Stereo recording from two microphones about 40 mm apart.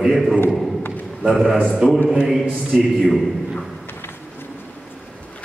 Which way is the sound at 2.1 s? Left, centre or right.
Centre.